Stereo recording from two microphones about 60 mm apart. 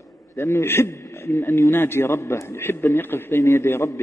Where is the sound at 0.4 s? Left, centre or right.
Left.